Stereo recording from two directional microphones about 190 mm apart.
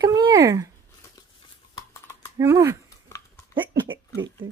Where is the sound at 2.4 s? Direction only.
15° right (ahead or behind).